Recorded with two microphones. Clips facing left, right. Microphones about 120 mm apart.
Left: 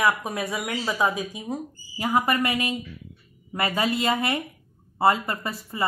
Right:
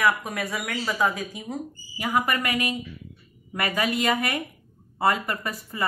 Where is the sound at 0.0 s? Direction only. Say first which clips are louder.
Even; 20° left (ahead or behind).